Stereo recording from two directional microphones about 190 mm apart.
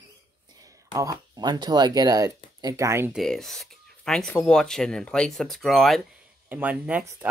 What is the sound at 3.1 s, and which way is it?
Speech, centre (ahead or behind).